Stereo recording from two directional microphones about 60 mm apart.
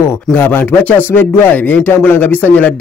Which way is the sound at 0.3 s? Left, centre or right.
Left.